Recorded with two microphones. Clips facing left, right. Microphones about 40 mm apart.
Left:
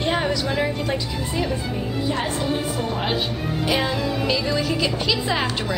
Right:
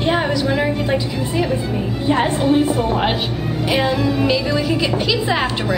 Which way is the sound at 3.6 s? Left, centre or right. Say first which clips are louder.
Right 5 dB; centre.